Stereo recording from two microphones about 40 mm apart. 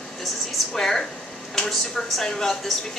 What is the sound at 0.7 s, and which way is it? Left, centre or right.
A woman's voice, centre.